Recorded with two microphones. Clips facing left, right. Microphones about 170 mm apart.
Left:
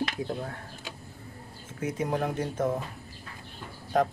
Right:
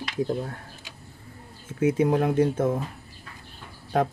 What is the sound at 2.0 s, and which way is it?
Speech, 60° right (ahead or behind).